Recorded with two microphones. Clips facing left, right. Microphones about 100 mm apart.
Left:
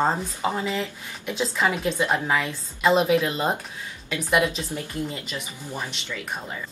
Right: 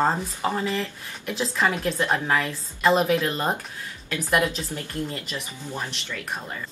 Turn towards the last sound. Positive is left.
turn(degrees=5)  # may be behind; listen again after turning